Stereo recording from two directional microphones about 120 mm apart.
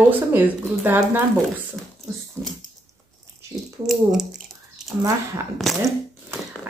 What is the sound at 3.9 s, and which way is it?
Speech, 5° right (ahead or behind).